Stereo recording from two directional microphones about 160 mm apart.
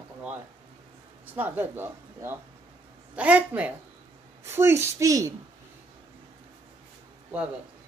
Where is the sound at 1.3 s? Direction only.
15° right (ahead or behind).